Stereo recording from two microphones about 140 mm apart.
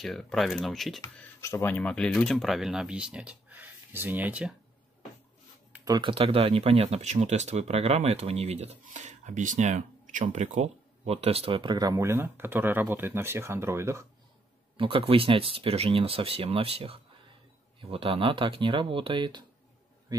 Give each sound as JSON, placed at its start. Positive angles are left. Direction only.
{"t": 0.0, "sound": "speech", "side_deg": 0}
{"t": 1.0, "sound": "speech", "side_deg": 20}
{"t": 5.9, "sound": "speech", "side_deg": -35}
{"t": 14.8, "sound": "speech", "side_deg": -40}